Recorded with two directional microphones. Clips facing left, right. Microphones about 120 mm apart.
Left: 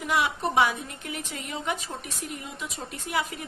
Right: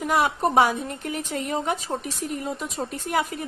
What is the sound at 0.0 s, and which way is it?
A woman's voice, 45° right (ahead or behind).